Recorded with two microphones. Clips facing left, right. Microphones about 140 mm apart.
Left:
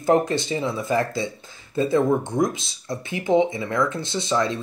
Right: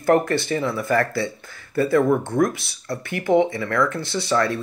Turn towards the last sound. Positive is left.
turn(degrees=20)  # may be behind; listen again after turning